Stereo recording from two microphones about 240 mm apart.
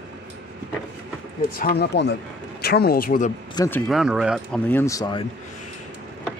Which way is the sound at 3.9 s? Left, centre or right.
Centre.